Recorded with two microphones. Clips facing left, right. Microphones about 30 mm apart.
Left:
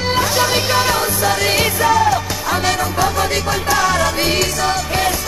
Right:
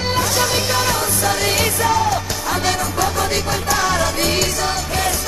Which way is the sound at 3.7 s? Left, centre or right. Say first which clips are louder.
Left 3 dB; centre.